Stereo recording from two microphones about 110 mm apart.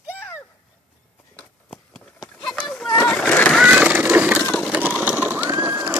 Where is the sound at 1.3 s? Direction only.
10° left (ahead or behind).